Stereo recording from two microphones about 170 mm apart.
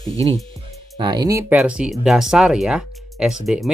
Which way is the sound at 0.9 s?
25° right (ahead or behind).